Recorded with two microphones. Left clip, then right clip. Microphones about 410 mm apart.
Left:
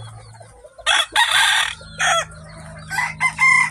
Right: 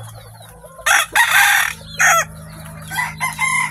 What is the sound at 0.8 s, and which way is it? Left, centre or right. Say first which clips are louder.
Chicken: right 3 dB; right.